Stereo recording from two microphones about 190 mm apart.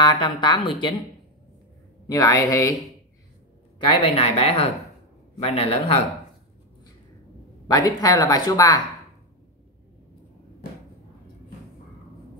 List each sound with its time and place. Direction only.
0.0 s a woman's voice: 25° left (ahead or behind)
2.0 s speech: 20° left (ahead or behind)
3.8 s speech: 30° left (ahead or behind)
7.6 s speech: 20° left (ahead or behind)